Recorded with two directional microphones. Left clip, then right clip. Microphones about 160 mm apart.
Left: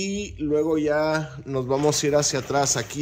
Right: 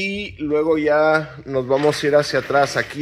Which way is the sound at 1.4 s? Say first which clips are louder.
Right 4 dB; 30° left (ahead or behind).